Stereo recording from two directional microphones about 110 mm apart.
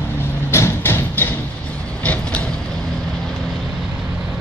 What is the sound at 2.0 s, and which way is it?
Vehicle, 15° left (ahead or behind).